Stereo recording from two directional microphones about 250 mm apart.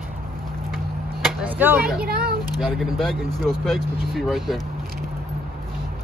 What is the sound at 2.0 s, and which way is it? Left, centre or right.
Speech, right.